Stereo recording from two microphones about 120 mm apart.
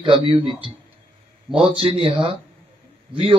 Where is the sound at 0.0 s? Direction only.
45° right (ahead or behind).